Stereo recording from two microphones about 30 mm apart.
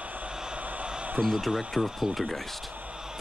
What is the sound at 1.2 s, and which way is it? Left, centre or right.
Speech, right.